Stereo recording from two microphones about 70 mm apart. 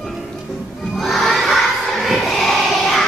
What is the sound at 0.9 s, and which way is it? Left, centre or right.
Crowd, centre.